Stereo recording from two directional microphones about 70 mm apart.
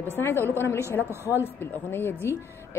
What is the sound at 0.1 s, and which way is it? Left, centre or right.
Speech, left.